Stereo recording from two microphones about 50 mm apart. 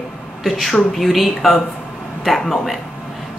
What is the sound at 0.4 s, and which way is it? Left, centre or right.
A woman's voice, centre.